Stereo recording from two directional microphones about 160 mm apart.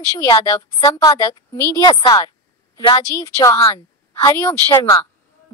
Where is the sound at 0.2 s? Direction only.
20° left (ahead or behind).